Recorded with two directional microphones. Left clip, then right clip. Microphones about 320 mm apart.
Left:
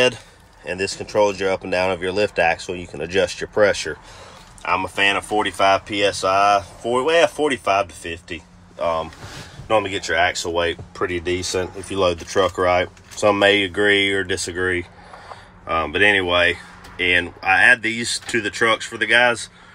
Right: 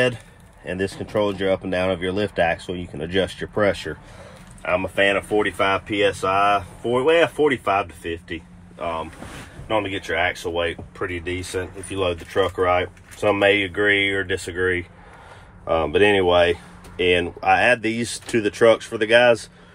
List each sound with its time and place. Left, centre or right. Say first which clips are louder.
0.8 s speech: left 2 dB; left
1.4 s speech: left 1 dB; centre